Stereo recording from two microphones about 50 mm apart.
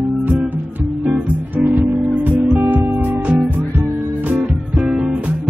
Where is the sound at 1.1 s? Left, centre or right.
Right.